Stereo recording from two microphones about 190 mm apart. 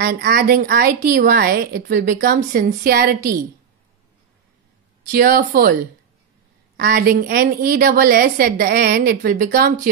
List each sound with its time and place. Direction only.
0.0 s a woman's voice: 55° right (ahead or behind)
5.1 s a woman's voice: 45° right (ahead or behind)
6.8 s a woman's voice: 50° right (ahead or behind)